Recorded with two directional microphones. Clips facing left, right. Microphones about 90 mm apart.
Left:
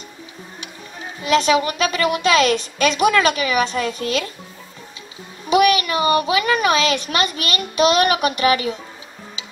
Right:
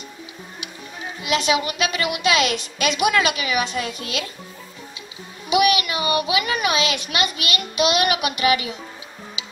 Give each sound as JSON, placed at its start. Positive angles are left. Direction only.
{"t": 1.2, "sound": "a child's voice", "side_deg": 40}
{"t": 5.5, "sound": "a child's voice", "side_deg": 40}